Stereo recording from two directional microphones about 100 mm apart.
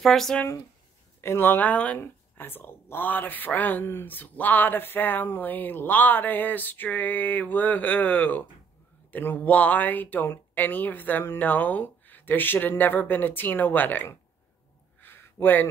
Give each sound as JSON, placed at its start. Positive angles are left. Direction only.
{"t": 0.0, "sound": "speech", "side_deg": 5}
{"t": 1.2, "sound": "speech", "side_deg": 25}
{"t": 15.0, "sound": "a sound", "side_deg": 20}
{"t": 15.4, "sound": "speech", "side_deg": 20}